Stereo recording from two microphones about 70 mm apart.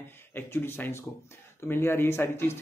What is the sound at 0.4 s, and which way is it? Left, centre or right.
Speech, left.